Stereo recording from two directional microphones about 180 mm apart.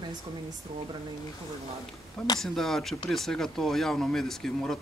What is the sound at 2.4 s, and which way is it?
Speech, centre (ahead or behind).